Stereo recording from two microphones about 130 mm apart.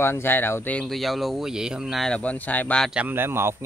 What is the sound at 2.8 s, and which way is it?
Speech, 10° right (ahead or behind).